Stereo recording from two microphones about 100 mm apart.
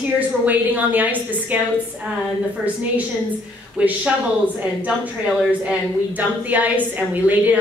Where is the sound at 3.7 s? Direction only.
15° right (ahead or behind).